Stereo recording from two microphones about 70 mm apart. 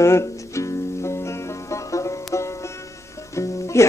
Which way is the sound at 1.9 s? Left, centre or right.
Left.